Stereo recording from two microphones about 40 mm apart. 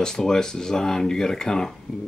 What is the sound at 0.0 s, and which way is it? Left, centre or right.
Speech, centre.